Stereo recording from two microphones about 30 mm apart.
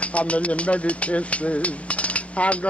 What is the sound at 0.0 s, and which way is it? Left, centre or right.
Speech, left.